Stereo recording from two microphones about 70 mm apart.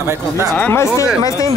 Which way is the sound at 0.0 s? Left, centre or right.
Right.